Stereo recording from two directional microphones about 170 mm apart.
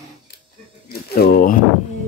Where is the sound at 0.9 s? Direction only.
65° left (ahead or behind).